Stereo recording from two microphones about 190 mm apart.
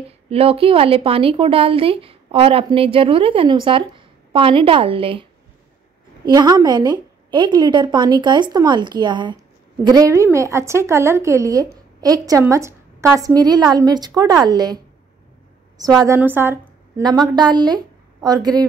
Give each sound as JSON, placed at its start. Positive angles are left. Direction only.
{"t": 0.3, "sound": "a woman's voice", "side_deg": -30}
{"t": 6.2, "sound": "a woman's voice", "side_deg": -20}
{"t": 16.1, "sound": "a woman's voice", "side_deg": -10}